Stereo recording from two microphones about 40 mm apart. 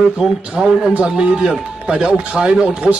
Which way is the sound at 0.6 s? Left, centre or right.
Centre.